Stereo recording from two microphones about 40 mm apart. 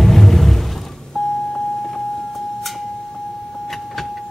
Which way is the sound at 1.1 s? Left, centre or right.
Centre.